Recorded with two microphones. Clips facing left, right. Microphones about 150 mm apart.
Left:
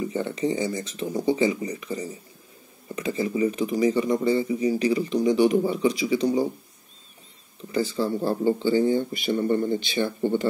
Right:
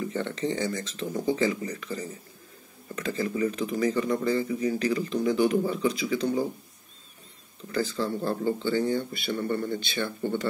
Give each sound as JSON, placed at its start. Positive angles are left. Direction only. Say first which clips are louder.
{"t": 0.0, "sound": "speech", "louder": "left 3 dB", "side_deg": 5}
{"t": 8.3, "sound": "speech", "louder": "left 6 dB", "side_deg": 15}